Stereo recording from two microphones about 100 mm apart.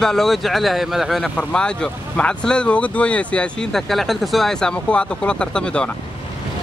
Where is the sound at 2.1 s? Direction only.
10° left (ahead or behind).